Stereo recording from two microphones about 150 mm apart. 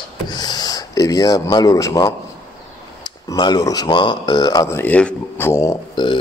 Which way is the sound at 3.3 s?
25° left (ahead or behind).